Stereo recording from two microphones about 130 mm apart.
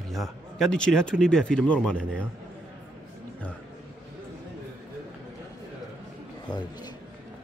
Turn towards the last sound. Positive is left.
turn(degrees=35)  # may be behind; listen again after turning